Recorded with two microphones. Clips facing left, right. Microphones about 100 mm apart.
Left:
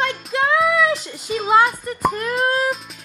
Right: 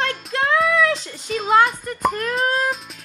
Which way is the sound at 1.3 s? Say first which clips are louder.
Left 1 dB; 5° left (ahead or behind).